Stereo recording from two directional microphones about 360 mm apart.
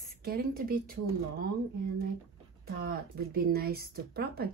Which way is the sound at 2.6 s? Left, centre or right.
Right.